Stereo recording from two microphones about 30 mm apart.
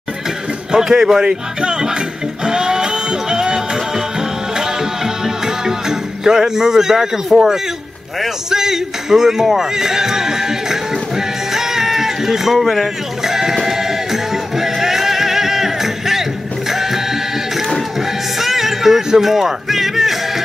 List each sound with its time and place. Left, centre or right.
0.7 s speech: right
2.4 s music: right
7.3 s speech: centre
8.5 s music: centre
13.2 s sheep: centre
13.7 s music: centre